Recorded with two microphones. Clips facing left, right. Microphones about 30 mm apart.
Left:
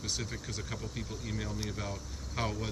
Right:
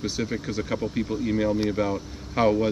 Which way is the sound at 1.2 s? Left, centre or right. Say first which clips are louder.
Right 16 dB; right.